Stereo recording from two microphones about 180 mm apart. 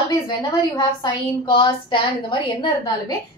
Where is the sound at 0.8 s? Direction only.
25° left (ahead or behind).